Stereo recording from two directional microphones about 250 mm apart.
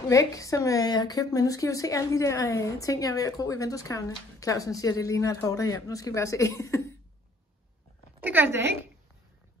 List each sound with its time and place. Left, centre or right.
0.1 s a woman's voice: centre
8.2 s a woman's voice: centre